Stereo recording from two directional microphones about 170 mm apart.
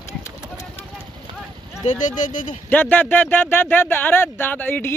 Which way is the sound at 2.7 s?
10° left (ahead or behind).